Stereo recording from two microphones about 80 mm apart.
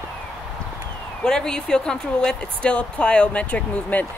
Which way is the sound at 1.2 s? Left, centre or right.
Centre.